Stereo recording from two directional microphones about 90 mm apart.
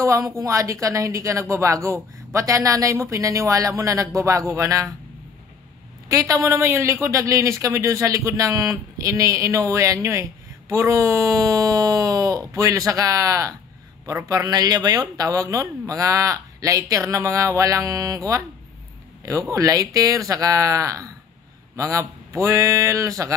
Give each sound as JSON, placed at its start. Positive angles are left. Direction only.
{"t": 0.0, "sound": "a woman's voice", "side_deg": -35}
{"t": 6.0, "sound": "a woman's voice", "side_deg": -40}